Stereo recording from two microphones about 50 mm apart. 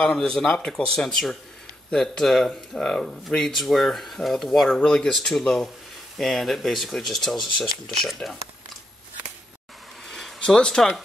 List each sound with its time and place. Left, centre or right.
0.3 s speech: centre
4.6 s speech: centre
10.0 s a sound: centre
10.4 s speech: centre